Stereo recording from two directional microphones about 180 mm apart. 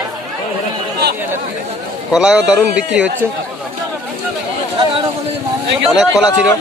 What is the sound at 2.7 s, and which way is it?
Speech, 75° right (ahead or behind).